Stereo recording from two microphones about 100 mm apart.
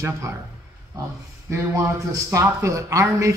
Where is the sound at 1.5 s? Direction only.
30° right (ahead or behind).